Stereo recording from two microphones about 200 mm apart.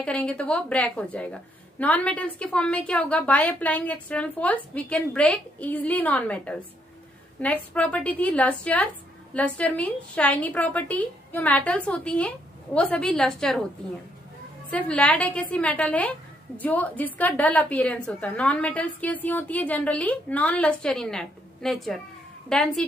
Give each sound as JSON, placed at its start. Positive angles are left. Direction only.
{"t": 0.0, "sound": "a woman's voice", "side_deg": 5}
{"t": 14.7, "sound": "a woman's voice", "side_deg": 5}